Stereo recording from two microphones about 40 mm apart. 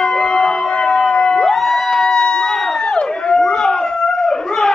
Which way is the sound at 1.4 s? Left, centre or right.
Centre.